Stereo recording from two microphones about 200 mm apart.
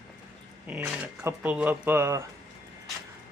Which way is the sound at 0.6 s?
10° right (ahead or behind).